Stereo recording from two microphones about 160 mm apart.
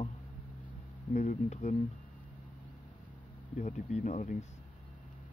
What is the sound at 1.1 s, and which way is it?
Speech, 50° left (ahead or behind).